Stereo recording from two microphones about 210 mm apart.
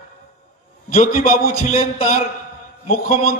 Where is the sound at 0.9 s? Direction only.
40° left (ahead or behind).